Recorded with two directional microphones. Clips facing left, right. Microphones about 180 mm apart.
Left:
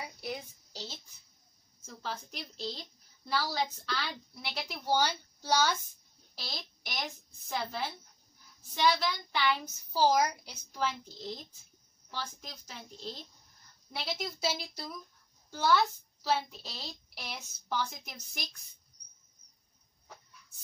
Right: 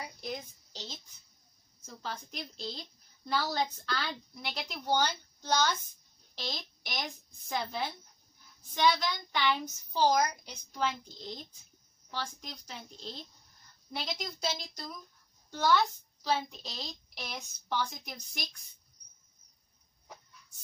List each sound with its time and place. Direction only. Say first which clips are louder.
0.2 s a sound: even; 10° left (ahead or behind)
2.0 s a child's voice: even; 5° left (ahead or behind)
12.4 s a child's voice: right 2 dB; 5° left (ahead or behind)